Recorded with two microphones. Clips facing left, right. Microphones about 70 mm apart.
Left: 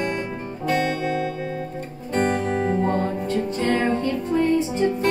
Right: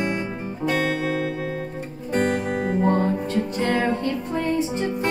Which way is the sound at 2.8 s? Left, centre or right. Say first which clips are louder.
Right 2 dB; right.